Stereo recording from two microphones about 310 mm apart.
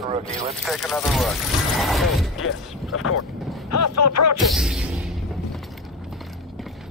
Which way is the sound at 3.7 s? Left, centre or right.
Left.